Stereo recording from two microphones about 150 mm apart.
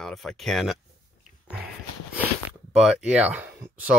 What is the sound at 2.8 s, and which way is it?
Speech, 5° right (ahead or behind).